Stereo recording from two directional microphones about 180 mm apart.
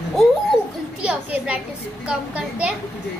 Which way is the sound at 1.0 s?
5° right (ahead or behind).